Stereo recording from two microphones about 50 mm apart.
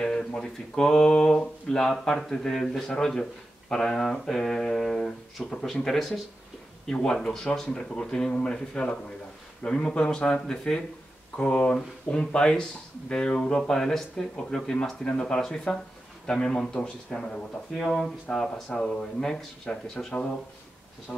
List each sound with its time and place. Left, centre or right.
0.0 s speech: centre
6.9 s speech: centre
18.7 s speech: centre